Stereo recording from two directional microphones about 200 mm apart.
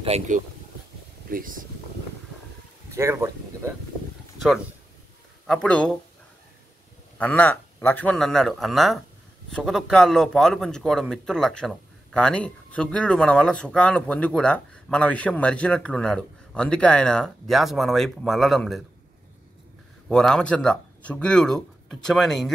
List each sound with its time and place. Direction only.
0.0 s speech: 30° right (ahead or behind)
1.3 s speech: 45° right (ahead or behind)
2.9 s speech: 15° right (ahead or behind)
5.5 s a man's voice: 5° left (ahead or behind)
7.2 s a man's voice: 5° left (ahead or behind)
20.1 s a man's voice: 5° left (ahead or behind)